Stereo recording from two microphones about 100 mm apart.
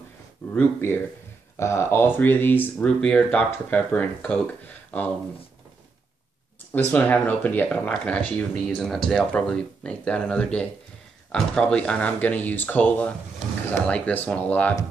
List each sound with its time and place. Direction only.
0.5 s speech: 20° left (ahead or behind)
2.9 s speech: 10° left (ahead or behind)
6.7 s speech: 20° left (ahead or behind)